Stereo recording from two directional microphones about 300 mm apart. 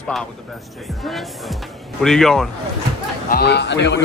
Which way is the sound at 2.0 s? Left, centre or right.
Centre.